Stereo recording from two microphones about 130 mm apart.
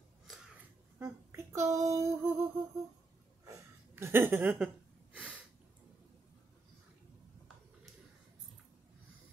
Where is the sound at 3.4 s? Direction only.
20° right (ahead or behind); by 5.4 s 5° right (ahead or behind).